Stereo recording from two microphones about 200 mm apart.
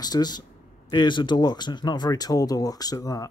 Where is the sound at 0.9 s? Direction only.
20° left (ahead or behind).